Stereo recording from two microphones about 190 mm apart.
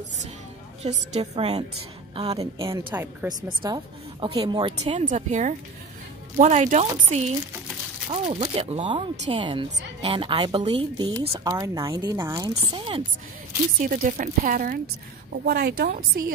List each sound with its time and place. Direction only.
0.8 s speech: 35° right (ahead or behind)
2.9 s speech: 10° right (ahead or behind)
3.3 s speech: 20° right (ahead or behind)
5.0 s speech: 40° right (ahead or behind)
13.8 s a woman's voice: 45° right (ahead or behind)